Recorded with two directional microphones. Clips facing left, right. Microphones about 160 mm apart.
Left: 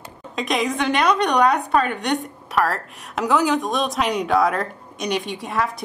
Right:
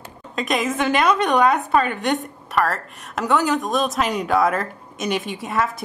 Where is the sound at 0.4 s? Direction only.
Centre (ahead or behind).